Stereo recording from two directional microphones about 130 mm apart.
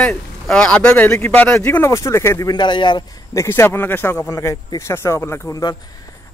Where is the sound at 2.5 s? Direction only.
35° left (ahead or behind).